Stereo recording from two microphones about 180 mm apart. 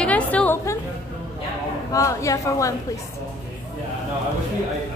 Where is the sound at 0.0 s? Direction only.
5° left (ahead or behind).